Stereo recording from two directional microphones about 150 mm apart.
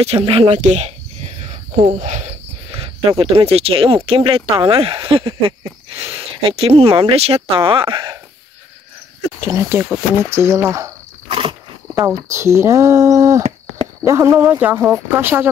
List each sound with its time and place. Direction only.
0.0 s cricket: 40° right (ahead or behind)
2.0 s speech: 50° right (ahead or behind)
3.2 s speech: 40° right (ahead or behind)
9.4 s speech: 20° right (ahead or behind)
11.2 s wild animals: 35° right (ahead or behind)
11.9 s speech: 20° right (ahead or behind)